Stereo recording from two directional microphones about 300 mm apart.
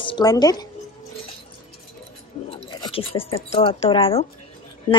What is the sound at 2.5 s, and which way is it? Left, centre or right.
Speech, centre.